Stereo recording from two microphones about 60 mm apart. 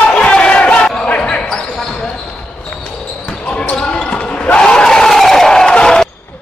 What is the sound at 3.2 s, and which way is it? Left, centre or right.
Basketball bounce, left.